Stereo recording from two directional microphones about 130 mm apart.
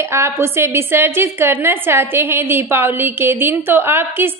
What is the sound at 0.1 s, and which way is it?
A woman's voice, 20° right (ahead or behind).